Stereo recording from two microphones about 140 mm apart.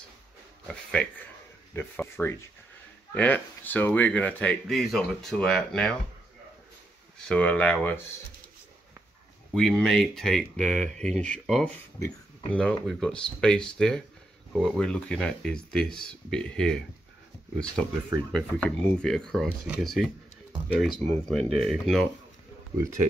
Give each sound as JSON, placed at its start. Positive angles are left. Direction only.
{"t": 1.8, "sound": "speech", "side_deg": 15}
{"t": 7.2, "sound": "speech", "side_deg": 10}
{"t": 9.5, "sound": "speech", "side_deg": 5}
{"t": 18.3, "sound": "speech", "side_deg": 5}